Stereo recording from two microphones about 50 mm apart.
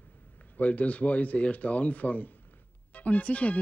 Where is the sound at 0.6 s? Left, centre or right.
Left.